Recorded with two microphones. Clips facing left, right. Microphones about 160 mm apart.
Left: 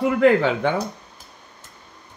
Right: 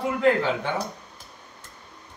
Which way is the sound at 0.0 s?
65° left (ahead or behind).